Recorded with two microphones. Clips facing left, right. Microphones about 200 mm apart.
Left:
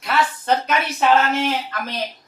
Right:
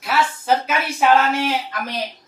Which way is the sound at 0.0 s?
5° right (ahead or behind).